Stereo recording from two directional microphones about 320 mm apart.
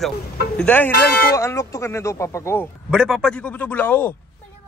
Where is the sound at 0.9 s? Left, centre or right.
Left.